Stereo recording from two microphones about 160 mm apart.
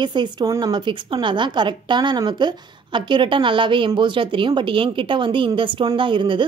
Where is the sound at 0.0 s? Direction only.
30° right (ahead or behind).